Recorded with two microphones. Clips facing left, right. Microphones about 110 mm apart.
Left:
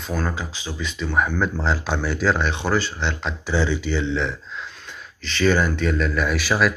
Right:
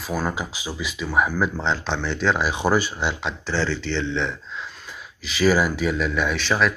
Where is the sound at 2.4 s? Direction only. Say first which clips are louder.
Right 2 dB; 15° right (ahead or behind).